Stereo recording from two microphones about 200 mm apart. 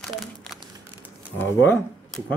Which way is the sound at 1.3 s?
10° left (ahead or behind).